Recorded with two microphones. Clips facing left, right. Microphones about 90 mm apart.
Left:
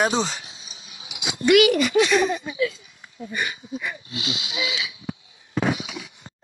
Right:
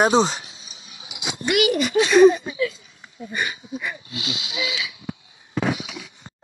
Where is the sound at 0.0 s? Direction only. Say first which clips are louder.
Right 5 dB; 35° right (ahead or behind).